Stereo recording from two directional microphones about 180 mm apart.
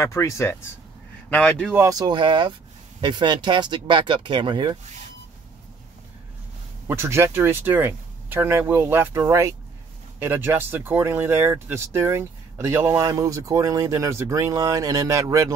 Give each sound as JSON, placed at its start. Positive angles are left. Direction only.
{"t": 0.0, "sound": "speech", "side_deg": 15}
{"t": 1.7, "sound": "speech", "side_deg": -15}
{"t": 6.9, "sound": "speech", "side_deg": -15}